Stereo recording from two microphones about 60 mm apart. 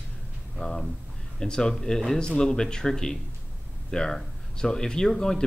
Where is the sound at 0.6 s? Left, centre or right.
Centre.